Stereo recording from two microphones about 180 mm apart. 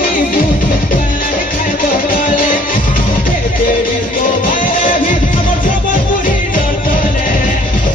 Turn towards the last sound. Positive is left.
turn(degrees=50)  # may be behind; listen again after turning